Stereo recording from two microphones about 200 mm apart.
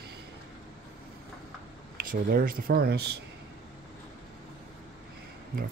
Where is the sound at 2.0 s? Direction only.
45° right (ahead or behind).